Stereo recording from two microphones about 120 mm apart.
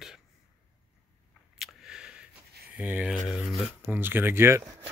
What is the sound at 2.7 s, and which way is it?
Speech, 10° right (ahead or behind).